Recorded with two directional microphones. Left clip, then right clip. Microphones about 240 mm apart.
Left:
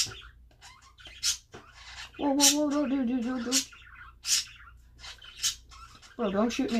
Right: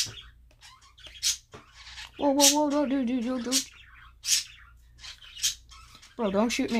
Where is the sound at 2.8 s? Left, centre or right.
Right.